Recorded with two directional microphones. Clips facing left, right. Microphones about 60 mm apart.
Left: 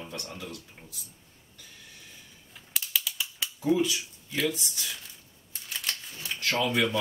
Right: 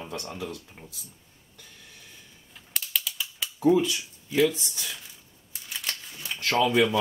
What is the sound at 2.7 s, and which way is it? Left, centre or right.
Typing, centre.